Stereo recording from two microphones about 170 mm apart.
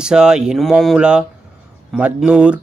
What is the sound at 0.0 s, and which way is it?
Speech, 5° right (ahead or behind).